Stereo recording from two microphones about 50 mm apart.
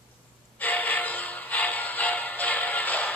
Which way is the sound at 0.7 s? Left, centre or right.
Left.